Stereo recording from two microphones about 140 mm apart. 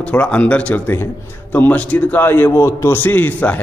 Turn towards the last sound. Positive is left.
turn(degrees=10)  # may be behind; listen again after turning